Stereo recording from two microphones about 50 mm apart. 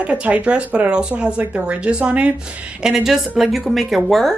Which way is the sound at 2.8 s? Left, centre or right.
Centre.